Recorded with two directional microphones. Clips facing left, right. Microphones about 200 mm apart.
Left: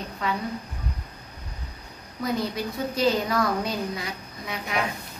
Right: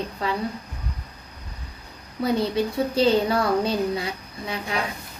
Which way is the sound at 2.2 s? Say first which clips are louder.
Right 5 dB; 30° right (ahead or behind).